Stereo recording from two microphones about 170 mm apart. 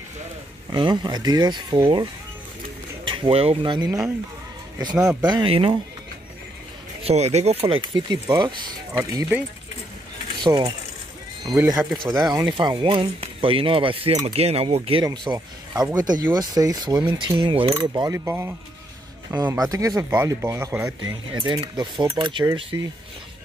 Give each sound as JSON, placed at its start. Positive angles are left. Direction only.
{"t": 0.7, "sound": "speech", "side_deg": -25}
{"t": 3.1, "sound": "speech", "side_deg": -30}
{"t": 4.9, "sound": "speech", "side_deg": -5}
{"t": 5.3, "sound": "speech", "side_deg": -30}
{"t": 7.0, "sound": "speech", "side_deg": -40}
{"t": 10.4, "sound": "speech", "side_deg": -30}
{"t": 11.4, "sound": "speech", "side_deg": -20}
{"t": 15.0, "sound": "speech", "side_deg": -20}
{"t": 21.4, "sound": "speech", "side_deg": -30}
{"t": 22.7, "sound": "speech", "side_deg": -15}